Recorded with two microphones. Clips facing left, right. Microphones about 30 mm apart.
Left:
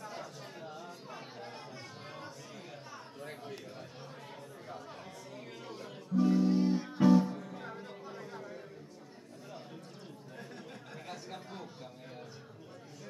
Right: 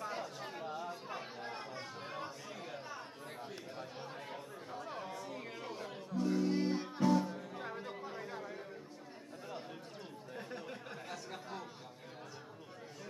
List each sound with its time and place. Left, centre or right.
0.0 s chatter: centre
4.9 s chatter: centre
6.1 s music: centre
6.6 s music: centre
7.0 s music: centre
7.5 s a sound: centre
10.3 s chatter: centre